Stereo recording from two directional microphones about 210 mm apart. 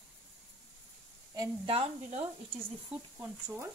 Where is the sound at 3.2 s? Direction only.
10° right (ahead or behind).